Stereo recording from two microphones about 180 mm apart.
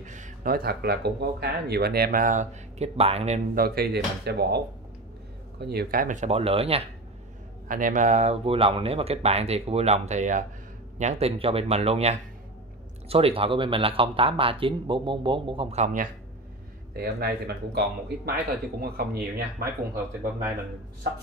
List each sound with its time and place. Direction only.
0.0 s speech: 45° right (ahead or behind)
3.5 s speech: 55° right (ahead or behind)
5.6 s speech: 60° right (ahead or behind); by 6.9 s 35° right (ahead or behind)
7.6 s speech: 45° right (ahead or behind)
16.9 s speech: 60° right (ahead or behind)